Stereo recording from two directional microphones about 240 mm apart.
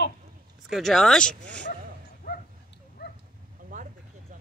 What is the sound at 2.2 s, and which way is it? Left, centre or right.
Bow-wow, left.